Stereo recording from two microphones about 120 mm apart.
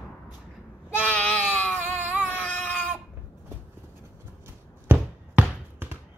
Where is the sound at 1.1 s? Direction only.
15° left (ahead or behind).